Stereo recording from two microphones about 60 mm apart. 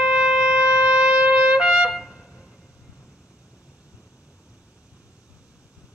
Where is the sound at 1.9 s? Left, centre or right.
Centre.